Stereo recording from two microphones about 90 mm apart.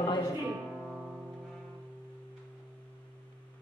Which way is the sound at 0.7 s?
Centre (ahead or behind).